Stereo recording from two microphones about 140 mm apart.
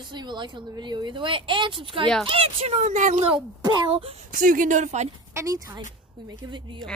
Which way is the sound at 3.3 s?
30° right (ahead or behind).